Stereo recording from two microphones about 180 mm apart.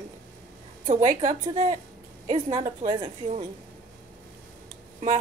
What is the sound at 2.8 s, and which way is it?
Speech, 25° right (ahead or behind).